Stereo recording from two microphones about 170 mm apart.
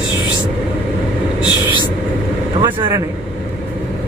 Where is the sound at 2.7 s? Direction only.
30° right (ahead or behind).